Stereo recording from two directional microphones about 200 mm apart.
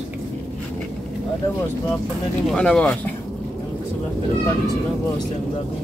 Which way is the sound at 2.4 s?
5° left (ahead or behind).